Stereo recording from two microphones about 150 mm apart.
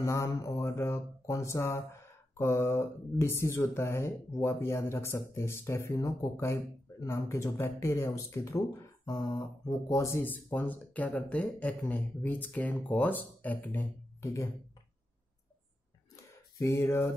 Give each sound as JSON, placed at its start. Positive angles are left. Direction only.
{"t": 0.0, "sound": "mantra", "side_deg": 20}
{"t": 0.3, "sound": "speech", "side_deg": 20}
{"t": 16.3, "sound": "a sound", "side_deg": 20}